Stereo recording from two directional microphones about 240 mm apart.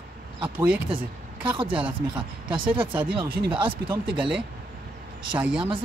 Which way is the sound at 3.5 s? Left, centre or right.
Right.